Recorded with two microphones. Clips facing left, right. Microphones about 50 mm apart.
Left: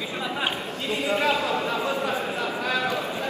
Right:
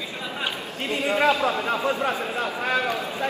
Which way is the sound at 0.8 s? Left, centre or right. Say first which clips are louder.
Right 3 dB; right.